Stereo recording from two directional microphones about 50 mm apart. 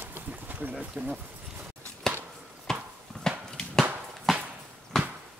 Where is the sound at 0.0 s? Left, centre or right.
Right.